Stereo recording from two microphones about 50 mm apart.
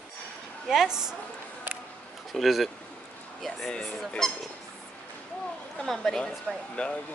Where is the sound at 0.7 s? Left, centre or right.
Centre.